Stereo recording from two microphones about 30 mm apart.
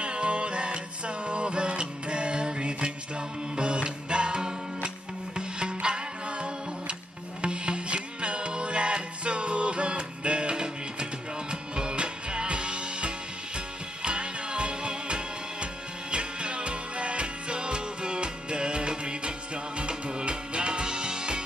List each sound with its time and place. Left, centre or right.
0.0 s music: right